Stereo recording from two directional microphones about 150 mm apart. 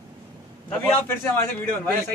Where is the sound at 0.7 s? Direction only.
15° left (ahead or behind).